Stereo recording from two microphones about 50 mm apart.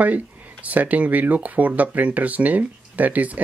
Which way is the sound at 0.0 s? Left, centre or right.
Right.